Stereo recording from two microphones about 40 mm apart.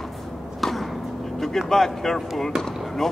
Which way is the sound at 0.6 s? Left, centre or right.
Centre.